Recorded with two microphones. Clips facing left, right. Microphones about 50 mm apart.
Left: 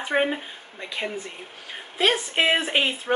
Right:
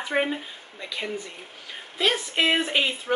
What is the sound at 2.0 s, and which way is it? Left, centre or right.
Speech, left.